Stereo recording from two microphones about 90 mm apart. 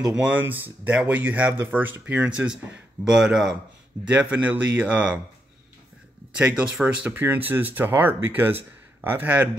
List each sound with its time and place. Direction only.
0.1 s speech: 15° right (ahead or behind)
6.3 s speech: 10° right (ahead or behind)
7.1 s speech: 20° right (ahead or behind)